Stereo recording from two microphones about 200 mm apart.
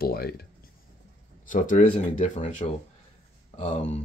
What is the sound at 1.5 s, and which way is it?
Speech, 40° left (ahead or behind).